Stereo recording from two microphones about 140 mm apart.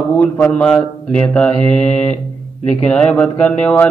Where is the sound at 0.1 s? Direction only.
10° left (ahead or behind).